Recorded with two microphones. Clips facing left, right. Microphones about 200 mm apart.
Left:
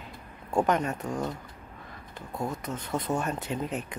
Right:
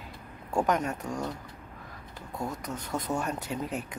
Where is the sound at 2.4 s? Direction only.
20° left (ahead or behind).